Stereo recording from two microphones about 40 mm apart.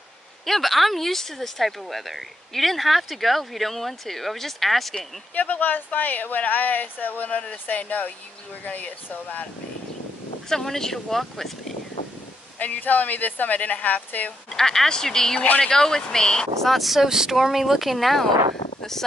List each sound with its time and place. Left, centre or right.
0.5 s speech: centre
5.3 s a woman's voice: left
10.5 s speech: centre
12.5 s a woman's voice: left
14.5 s speech: centre
16.6 s speech: centre
18.8 s a sound: centre